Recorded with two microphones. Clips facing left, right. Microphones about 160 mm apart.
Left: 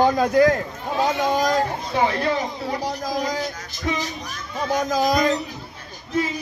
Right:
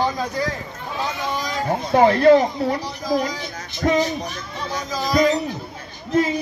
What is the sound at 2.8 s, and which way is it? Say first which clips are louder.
Speech: right 2 dB; 45° left (ahead or behind).